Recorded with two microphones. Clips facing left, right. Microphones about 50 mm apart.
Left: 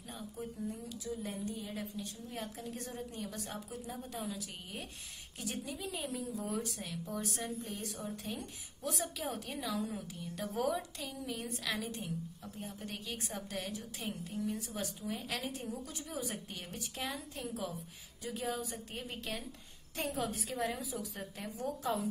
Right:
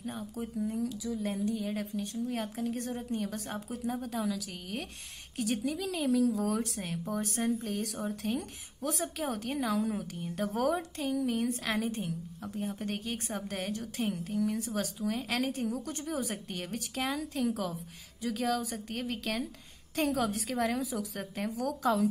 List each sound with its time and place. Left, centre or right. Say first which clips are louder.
0.0 s a sound: right 8 dB; right
1.1 s a woman's voice: right 6 dB; right
4.1 s a woman's voice: right 7 dB; right
5.4 s a woman's voice: right 9 dB; right
6.8 s a woman's voice: right 5 dB; right
8.8 s a woman's voice: right 5 dB; right
18.2 s a woman's voice: right 7 dB; right